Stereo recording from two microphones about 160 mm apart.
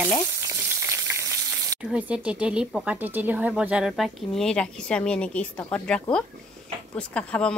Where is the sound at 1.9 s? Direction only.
10° right (ahead or behind).